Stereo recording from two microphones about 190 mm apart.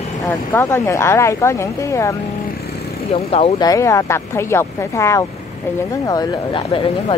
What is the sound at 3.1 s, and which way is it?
Speech, 35° left (ahead or behind).